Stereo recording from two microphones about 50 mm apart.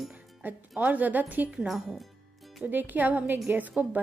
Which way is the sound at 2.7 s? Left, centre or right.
Right.